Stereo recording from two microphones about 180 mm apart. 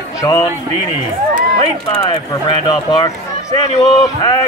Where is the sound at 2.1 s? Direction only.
30° left (ahead or behind).